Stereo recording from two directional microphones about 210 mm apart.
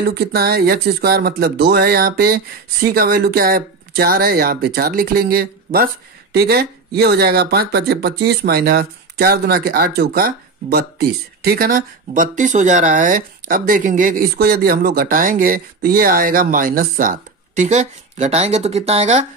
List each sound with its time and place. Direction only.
0.1 s speech: 50° right (ahead or behind); by 19.2 s 30° right (ahead or behind)